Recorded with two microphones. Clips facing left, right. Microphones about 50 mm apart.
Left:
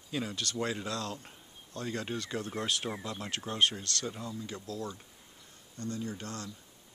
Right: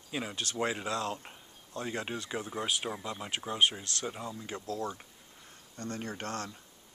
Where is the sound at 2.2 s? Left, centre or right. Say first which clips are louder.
Even; centre; by 6.5 s right.